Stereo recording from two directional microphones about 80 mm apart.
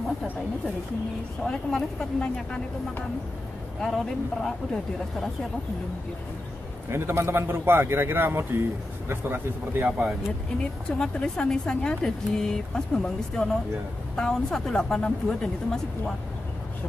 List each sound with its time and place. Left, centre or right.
1.4 s speech: centre
3.8 s speech: centre
6.9 s a man's voice: right
10.6 s speech: centre